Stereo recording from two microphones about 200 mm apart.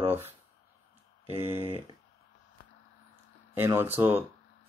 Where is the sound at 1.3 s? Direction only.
30° right (ahead or behind).